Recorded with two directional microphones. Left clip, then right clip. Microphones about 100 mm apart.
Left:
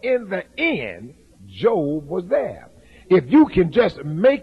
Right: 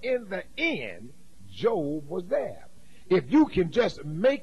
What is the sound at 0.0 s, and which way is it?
A man's voice, 40° right (ahead or behind).